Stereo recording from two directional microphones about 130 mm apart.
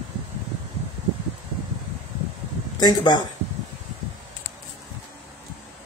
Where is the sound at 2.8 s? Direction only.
35° left (ahead or behind).